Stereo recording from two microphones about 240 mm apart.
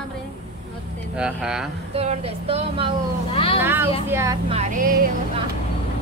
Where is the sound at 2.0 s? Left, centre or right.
Right.